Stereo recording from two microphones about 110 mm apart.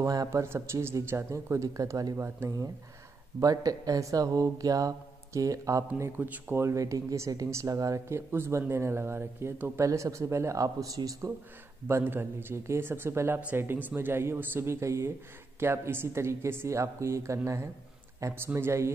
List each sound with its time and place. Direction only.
0.0 s speech: 30° right (ahead or behind)
3.3 s speech: 35° right (ahead or behind)
11.9 s speech: 20° right (ahead or behind)